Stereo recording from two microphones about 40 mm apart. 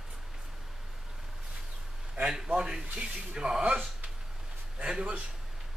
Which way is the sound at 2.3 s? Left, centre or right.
Centre.